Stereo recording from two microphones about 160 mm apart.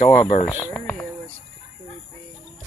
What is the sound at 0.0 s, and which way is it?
Speech, 35° left (ahead or behind).